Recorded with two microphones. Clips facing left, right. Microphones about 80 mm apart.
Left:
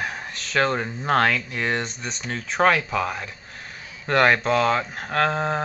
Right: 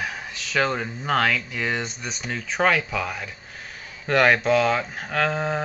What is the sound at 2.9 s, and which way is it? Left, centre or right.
Speech, left.